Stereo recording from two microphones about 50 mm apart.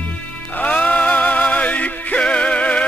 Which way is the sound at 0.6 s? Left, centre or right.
Left.